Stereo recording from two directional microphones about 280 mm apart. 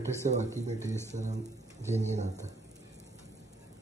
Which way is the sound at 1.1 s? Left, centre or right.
Right.